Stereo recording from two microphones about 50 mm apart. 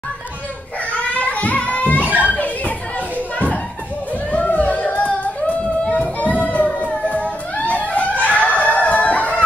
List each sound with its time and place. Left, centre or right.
1.1 s music: left
2.1 s children playing: left
4.3 s yodeling: left
6.8 s music: left
8.2 s a sound: left